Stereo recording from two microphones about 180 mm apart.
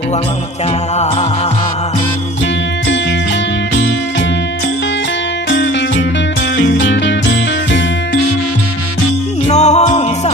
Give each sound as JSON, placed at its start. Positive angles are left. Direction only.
{"t": 5.5, "sound": "music", "side_deg": 75}
{"t": 9.5, "sound": "music", "side_deg": 40}